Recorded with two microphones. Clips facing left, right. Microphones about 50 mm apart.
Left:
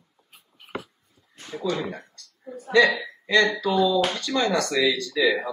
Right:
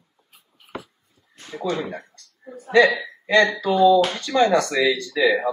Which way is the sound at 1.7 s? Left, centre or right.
Right.